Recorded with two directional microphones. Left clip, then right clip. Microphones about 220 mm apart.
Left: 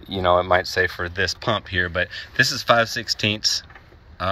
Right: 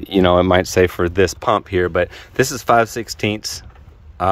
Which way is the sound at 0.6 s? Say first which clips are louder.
Right 6 dB; 90° right.